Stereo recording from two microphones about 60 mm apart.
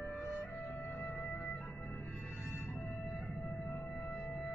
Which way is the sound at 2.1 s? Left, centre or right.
Centre.